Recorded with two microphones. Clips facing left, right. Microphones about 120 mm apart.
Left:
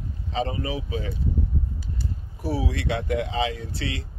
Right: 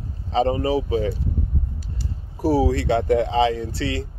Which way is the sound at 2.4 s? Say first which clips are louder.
Right 9 dB; 40° right (ahead or behind).